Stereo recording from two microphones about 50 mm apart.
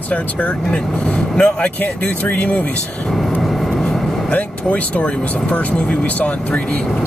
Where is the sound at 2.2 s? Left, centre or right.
Left.